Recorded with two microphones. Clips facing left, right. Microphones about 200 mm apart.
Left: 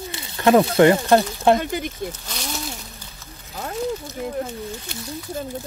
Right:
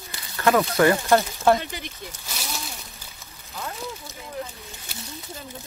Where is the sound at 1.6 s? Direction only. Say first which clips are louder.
Left 9 dB; 50° left (ahead or behind).